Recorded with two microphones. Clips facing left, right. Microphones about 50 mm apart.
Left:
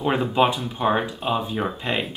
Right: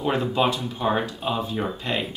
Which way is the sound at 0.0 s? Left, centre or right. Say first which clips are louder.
Left 2 dB; centre.